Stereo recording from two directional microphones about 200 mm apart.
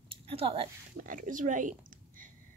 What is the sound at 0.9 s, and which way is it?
Speech, 40° right (ahead or behind).